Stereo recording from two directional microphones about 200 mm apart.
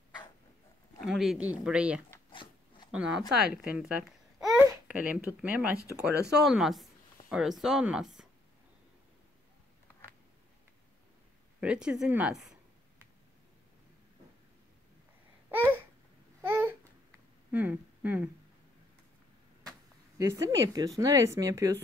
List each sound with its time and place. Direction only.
1.0 s a woman's voice: centre (ahead or behind)
11.6 s a woman's voice: 5° right (ahead or behind)
15.5 s babbling: 10° right (ahead or behind)
17.5 s a sound: 10° right (ahead or behind)
20.2 s speech: 15° right (ahead or behind)